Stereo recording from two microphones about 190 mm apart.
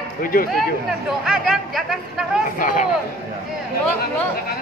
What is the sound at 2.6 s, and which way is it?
Speech, 45° left (ahead or behind).